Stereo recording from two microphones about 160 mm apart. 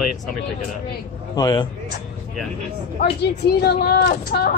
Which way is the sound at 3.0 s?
90° left.